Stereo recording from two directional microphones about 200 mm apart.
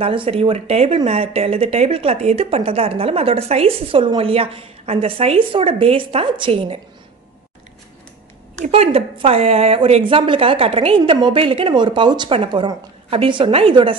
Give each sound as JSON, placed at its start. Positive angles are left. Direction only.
{"t": 0.0, "sound": "speech", "side_deg": -25}
{"t": 8.5, "sound": "speech", "side_deg": -35}